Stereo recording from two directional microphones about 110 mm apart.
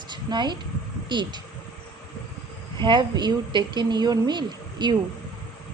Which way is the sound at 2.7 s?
45° right (ahead or behind).